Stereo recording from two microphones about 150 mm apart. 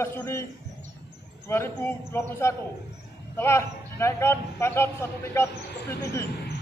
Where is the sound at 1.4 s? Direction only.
15° left (ahead or behind).